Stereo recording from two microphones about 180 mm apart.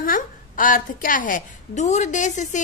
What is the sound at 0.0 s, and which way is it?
A woman's voice, 50° left (ahead or behind).